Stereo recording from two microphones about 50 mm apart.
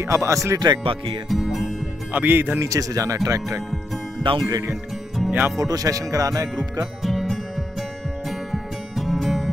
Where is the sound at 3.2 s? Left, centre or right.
Right.